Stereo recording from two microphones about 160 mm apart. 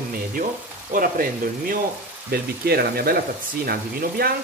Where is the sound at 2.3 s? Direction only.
75° right (ahead or behind).